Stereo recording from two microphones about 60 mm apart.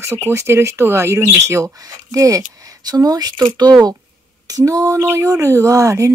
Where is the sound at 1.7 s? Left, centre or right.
Right.